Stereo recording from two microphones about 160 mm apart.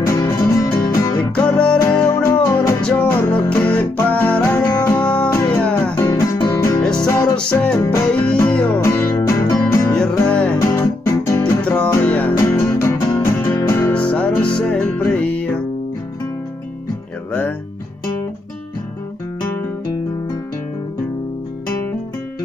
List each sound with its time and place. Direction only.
0.0 s music: 20° left (ahead or behind)
1.3 s music: 5° left (ahead or behind)
1.8 s music: 20° left (ahead or behind)
2.8 s music: 5° left (ahead or behind)
10.6 s guitar: 20° left (ahead or behind)
11.6 s music: 5° left (ahead or behind)
17.3 s music: 10° left (ahead or behind)